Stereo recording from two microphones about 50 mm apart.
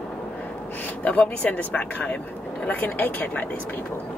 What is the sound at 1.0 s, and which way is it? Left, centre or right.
Speech, left.